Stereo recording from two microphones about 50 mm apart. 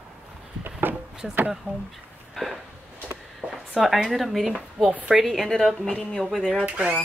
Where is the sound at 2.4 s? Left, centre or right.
Centre.